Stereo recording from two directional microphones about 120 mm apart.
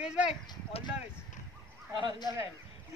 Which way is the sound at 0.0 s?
10° right (ahead or behind).